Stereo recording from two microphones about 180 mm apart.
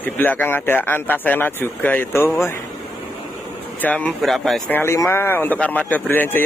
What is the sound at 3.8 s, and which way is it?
Speech, 5° left (ahead or behind).